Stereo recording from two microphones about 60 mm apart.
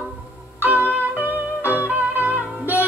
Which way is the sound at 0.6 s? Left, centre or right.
Right.